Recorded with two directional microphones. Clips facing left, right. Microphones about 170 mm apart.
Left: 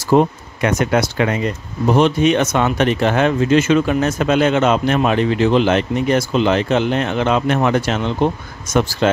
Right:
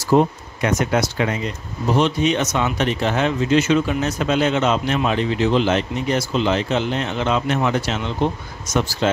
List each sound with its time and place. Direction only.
0.1 s speech: 60° left (ahead or behind)